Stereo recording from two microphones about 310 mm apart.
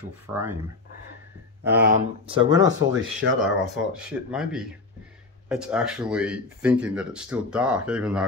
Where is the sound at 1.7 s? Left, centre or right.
Right.